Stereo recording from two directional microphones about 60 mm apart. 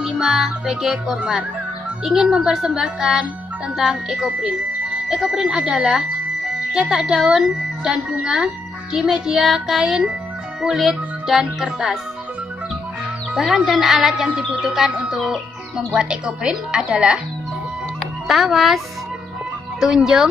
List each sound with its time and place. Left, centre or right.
0.0 s music: centre
0.8 s a child's voice: centre
2.0 s speech: centre
4.4 s speech: centre
13.7 s speech: centre
18.2 s a child's voice: centre
19.8 s speech: centre